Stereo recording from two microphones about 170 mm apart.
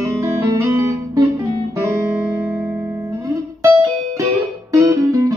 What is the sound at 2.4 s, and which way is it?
Music, 10° right (ahead or behind).